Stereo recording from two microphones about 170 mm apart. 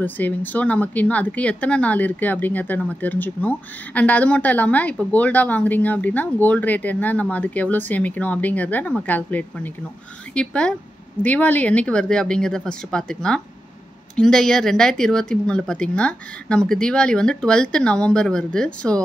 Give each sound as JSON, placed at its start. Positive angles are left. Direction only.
{"t": 0.0, "sound": "speech", "side_deg": 10}